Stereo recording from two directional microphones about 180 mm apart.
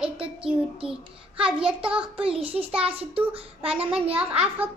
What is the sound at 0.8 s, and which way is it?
A child's voice, 30° right (ahead or behind).